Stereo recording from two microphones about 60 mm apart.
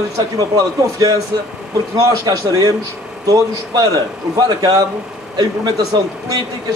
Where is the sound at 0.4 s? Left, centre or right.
Right.